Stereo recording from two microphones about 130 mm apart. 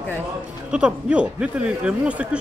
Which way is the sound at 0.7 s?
5° right (ahead or behind).